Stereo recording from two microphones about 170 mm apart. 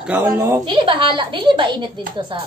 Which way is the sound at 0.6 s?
30° right (ahead or behind).